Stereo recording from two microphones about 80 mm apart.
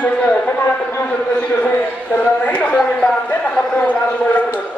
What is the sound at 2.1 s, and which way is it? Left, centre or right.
A man's voice, centre.